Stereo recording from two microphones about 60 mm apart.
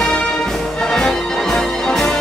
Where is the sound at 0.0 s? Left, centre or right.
Centre.